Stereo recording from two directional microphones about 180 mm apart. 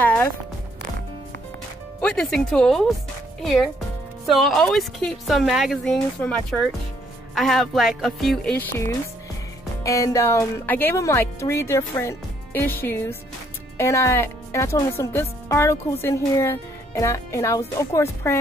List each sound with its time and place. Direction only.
0.0 s music: 10° left (ahead or behind)
2.0 s speech: 5° left (ahead or behind)
4.3 s speech: centre (ahead or behind)
9.8 s speech: 20° left (ahead or behind)